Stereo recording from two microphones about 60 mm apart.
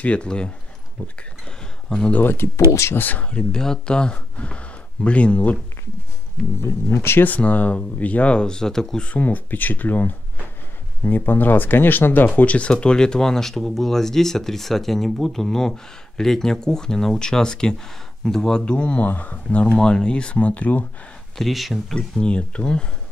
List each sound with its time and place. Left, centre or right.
0.0 s speech: centre
1.9 s speech: centre
2.2 s speech: left
3.0 s speech: left
3.3 s speech: centre
6.6 s speech: left
7.2 s speech: left; by 9.0 s centre
9.0 s speech: left
12.4 s speech: left
21.4 s speech: centre
21.9 s speech: centre